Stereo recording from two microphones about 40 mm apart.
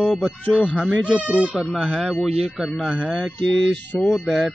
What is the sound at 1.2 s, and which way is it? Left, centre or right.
Speech, right.